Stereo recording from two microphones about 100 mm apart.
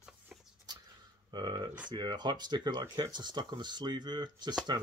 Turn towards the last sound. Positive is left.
turn(degrees=-45)  # may be behind; listen again after turning